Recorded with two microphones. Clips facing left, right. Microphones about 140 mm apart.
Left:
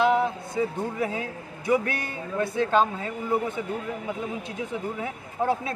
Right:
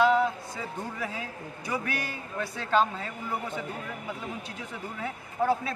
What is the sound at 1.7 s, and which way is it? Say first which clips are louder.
Speech: left 8 dB; 25° left (ahead or behind).